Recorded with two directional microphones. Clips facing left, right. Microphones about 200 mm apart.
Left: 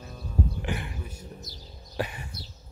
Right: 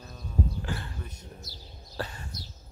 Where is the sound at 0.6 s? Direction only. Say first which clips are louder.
Left 3 dB; 15° left (ahead or behind).